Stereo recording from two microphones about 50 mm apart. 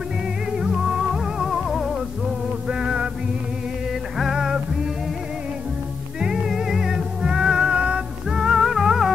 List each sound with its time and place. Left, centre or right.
0.5 s music: centre
2.7 s music: centre
4.2 s music: centre
6.1 s music: centre
8.3 s music: centre